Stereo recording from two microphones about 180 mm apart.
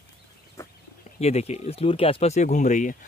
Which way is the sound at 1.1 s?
35° left (ahead or behind).